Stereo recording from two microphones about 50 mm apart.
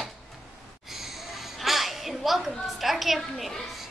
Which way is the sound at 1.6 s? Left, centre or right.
Centre.